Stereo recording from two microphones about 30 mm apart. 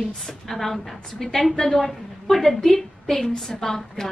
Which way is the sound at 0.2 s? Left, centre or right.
Centre.